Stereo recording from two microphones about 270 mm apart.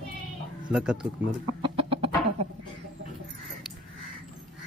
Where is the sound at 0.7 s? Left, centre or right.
Centre.